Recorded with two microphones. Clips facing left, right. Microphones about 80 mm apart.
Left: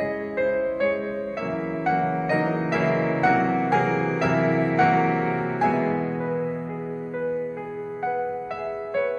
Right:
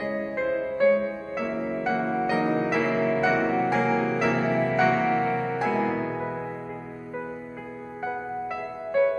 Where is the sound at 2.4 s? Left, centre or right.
Centre.